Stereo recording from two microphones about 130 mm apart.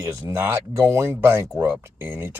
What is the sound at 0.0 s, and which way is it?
Speech, 20° right (ahead or behind).